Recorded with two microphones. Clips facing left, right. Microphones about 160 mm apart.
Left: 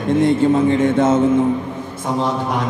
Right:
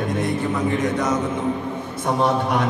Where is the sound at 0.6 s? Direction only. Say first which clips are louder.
Left 7 dB; 25° left (ahead or behind).